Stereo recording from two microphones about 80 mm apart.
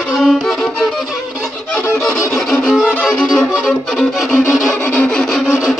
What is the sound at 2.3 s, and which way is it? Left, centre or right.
Violin, centre.